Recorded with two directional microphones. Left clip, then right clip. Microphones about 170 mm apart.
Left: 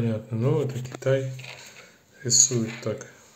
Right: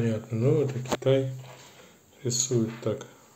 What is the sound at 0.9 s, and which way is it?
Speech, 25° right (ahead or behind).